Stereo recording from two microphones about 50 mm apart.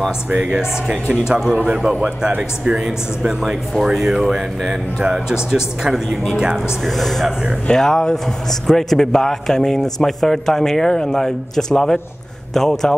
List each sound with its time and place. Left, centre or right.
1.5 s a man's voice: centre
6.8 s a man's voice: centre